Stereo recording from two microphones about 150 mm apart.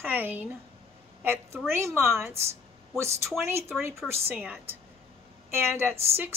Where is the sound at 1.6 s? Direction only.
15° right (ahead or behind).